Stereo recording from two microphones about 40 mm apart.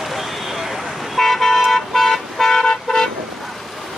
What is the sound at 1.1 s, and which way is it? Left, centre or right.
Vehicle, centre.